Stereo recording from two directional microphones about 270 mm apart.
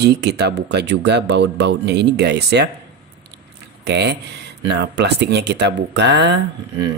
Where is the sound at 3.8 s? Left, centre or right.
Right.